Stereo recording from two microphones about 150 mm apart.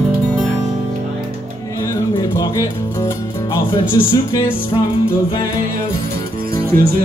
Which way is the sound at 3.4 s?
20° left (ahead or behind).